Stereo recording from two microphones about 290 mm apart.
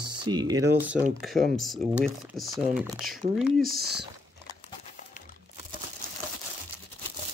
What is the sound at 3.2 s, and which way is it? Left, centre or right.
Speech, right.